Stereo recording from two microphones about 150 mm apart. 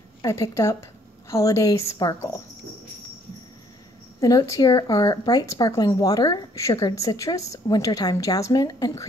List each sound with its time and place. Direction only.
0.2 s speech: 20° left (ahead or behind)
4.2 s speech: 25° left (ahead or behind)